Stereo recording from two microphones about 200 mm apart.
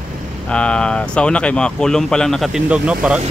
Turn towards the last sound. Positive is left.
turn(degrees=-5)  # may be behind; listen again after turning